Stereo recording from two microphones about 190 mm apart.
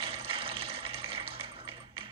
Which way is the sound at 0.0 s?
30° right (ahead or behind).